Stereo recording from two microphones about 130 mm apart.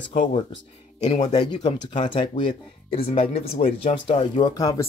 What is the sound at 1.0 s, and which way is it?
Speech, 60° left (ahead or behind).